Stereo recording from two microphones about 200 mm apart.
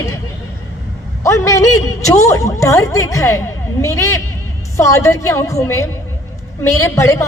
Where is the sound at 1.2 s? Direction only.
15° left (ahead or behind).